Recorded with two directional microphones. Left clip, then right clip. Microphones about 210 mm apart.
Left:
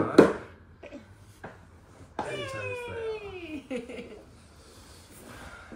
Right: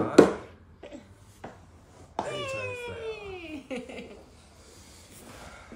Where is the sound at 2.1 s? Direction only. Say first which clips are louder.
Right 2 dB; centre (ahead or behind).